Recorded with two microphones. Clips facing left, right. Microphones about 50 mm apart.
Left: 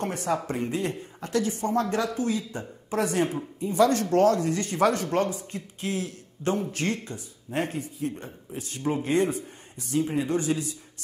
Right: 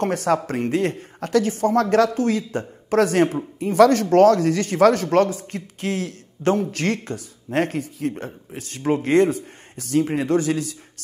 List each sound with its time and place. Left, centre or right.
0.0 s speech: right